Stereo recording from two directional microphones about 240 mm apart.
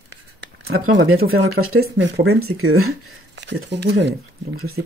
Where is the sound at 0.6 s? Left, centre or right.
Right.